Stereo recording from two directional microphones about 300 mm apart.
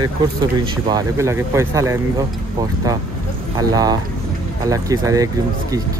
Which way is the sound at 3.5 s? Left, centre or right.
Centre.